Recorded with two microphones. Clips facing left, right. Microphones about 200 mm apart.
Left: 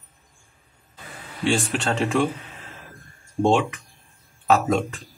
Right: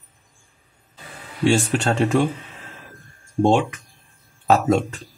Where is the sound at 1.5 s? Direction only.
40° right (ahead or behind).